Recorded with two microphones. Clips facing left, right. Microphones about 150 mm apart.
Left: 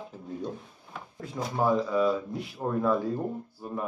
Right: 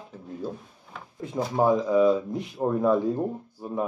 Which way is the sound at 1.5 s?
15° right (ahead or behind).